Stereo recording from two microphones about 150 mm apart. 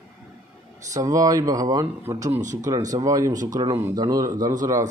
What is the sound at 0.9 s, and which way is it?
Speech, 25° right (ahead or behind).